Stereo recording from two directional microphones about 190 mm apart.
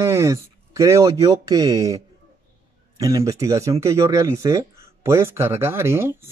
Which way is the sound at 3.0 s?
15° right (ahead or behind).